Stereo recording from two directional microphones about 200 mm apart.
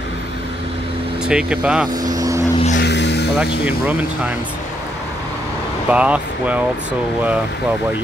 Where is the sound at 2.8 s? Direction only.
60° left (ahead or behind).